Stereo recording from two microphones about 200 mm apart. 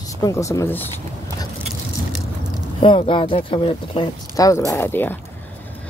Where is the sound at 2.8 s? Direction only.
25° left (ahead or behind).